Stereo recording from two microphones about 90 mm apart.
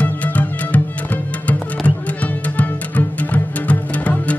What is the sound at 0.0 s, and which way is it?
Music, 15° left (ahead or behind).